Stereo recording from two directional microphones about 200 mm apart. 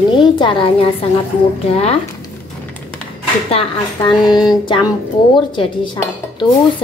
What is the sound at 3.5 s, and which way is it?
Speech, 20° left (ahead or behind).